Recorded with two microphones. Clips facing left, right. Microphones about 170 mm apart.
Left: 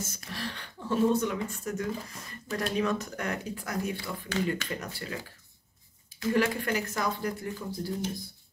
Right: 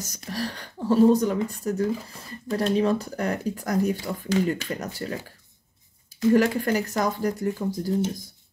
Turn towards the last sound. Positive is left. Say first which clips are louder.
# right 8 dB
turn(degrees=-45)  # may be behind; listen again after turning